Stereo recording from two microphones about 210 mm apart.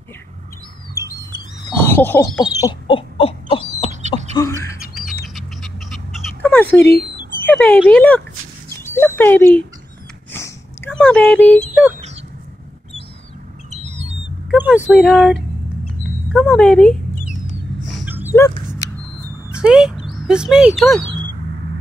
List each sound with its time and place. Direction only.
1.0 s rodents: 15° right (ahead or behind)
1.8 s speech: 10° left (ahead or behind); by 3.6 s 25° left (ahead or behind)
4.0 s bird: 35° right (ahead or behind)
4.4 s bird: 15° left (ahead or behind)
4.7 s bird: centre (ahead or behind)
6.4 s a sound: 5° left (ahead or behind)
7.4 s speech: 5° left (ahead or behind)
10.3 s a sound: 10° left (ahead or behind)
13.7 s squawk: 30° right (ahead or behind)
14.5 s speech: 5° right (ahead or behind)
17.8 s dog: 5° right (ahead or behind)
19.6 s speech: 5° right (ahead or behind)